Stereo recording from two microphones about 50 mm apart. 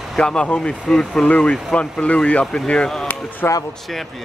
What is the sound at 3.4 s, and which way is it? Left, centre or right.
Speech, left.